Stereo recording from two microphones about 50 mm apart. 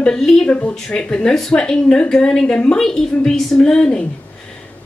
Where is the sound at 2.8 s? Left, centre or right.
Centre.